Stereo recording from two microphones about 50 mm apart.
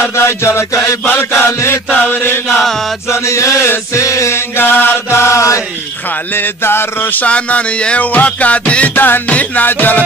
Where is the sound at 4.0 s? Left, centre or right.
Left.